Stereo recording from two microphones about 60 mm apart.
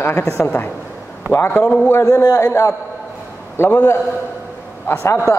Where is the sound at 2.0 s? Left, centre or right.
Left.